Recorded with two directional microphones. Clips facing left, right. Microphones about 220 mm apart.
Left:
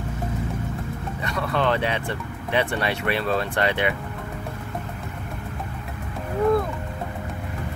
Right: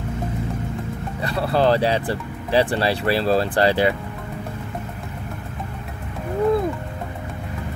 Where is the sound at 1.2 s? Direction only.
35° right (ahead or behind).